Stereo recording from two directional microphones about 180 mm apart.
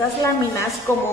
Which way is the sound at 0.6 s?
15° left (ahead or behind).